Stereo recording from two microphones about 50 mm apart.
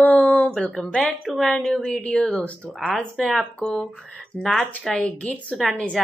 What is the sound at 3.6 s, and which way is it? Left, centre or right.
A woman's voice, centre.